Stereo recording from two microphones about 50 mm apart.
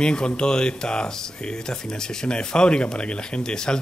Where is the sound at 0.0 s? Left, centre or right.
Centre.